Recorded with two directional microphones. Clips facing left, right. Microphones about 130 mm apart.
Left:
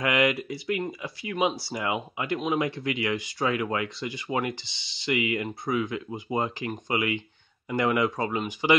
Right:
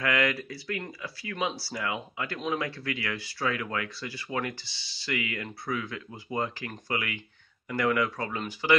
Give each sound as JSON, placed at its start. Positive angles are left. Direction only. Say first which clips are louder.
{"t": 0.0, "sound": "speech", "louder": "left 3 dB", "side_deg": 20}